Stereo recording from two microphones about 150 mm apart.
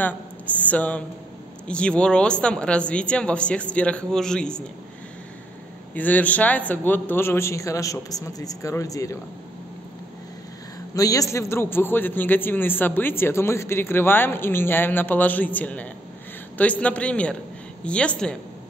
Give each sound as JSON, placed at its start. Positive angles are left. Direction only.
{"t": 0.7, "sound": "a man's voice", "side_deg": 10}
{"t": 5.9, "sound": "a man's voice", "side_deg": 10}
{"t": 11.0, "sound": "a man's voice", "side_deg": 25}